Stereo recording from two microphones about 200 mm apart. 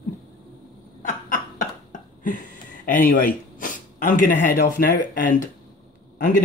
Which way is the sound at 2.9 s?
45° left (ahead or behind).